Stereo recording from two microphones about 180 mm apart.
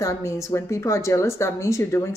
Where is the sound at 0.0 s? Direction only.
15° left (ahead or behind).